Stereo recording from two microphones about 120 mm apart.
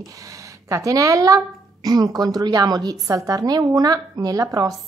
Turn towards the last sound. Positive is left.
turn(degrees=-30)  # may be behind; listen again after turning